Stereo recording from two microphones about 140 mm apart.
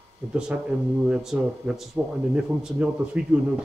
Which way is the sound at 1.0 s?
5° right (ahead or behind).